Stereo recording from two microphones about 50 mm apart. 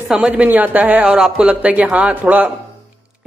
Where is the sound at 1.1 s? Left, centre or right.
Centre.